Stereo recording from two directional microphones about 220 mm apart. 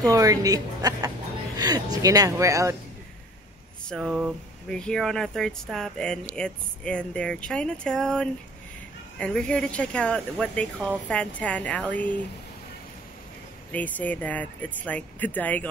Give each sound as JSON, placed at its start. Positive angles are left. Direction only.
{"t": 0.0, "sound": "speech", "side_deg": -15}
{"t": 3.9, "sound": "speech", "side_deg": 0}
{"t": 13.7, "sound": "speech", "side_deg": 5}